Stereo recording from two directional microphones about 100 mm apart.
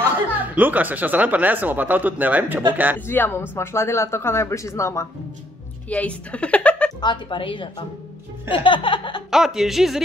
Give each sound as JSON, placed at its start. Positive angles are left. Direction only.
{"t": 0.0, "sound": "speech", "side_deg": -20}
{"t": 3.1, "sound": "speech", "side_deg": 20}
{"t": 5.9, "sound": "a woman's voice", "side_deg": 15}
{"t": 7.0, "sound": "a woman's voice", "side_deg": 50}
{"t": 8.5, "sound": "music", "side_deg": 60}
{"t": 9.3, "sound": "speech", "side_deg": -5}